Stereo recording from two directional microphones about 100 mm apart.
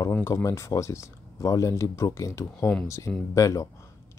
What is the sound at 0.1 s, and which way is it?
Speech, 30° left (ahead or behind).